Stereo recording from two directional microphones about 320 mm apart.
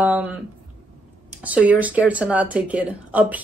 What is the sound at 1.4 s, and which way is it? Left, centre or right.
Speech, centre.